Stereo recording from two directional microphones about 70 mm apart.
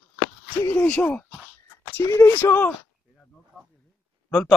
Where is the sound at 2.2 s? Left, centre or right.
Left.